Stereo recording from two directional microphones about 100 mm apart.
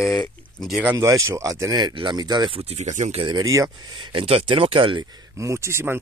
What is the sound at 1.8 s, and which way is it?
Speech, 55° right (ahead or behind).